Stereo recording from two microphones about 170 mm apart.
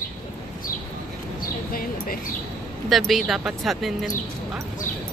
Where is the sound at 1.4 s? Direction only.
60° left (ahead or behind).